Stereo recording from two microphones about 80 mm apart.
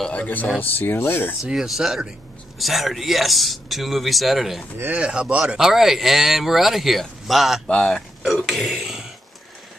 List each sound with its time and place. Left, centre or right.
0.1 s speech: centre
1.4 s speech: centre
4.7 s speech: right
5.0 s speech: centre
7.6 s speech: centre
8.5 s speech: centre